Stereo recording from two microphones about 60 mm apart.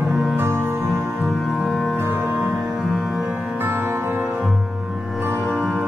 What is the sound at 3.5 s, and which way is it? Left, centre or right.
Music, right.